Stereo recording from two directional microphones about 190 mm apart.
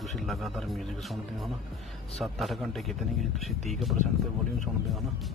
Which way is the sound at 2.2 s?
Centre (ahead or behind).